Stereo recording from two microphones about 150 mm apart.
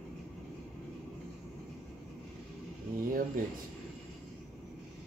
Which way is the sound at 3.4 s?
60° right (ahead or behind).